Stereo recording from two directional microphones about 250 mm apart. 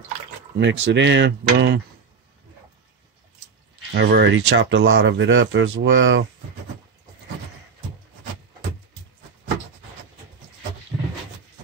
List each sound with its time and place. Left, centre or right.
0.6 s speech: right
3.9 s speech: right